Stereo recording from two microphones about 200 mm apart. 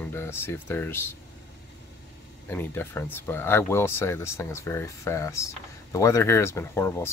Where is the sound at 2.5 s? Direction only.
10° left (ahead or behind).